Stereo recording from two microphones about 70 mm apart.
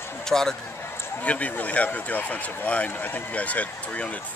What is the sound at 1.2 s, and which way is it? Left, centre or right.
Speech, centre.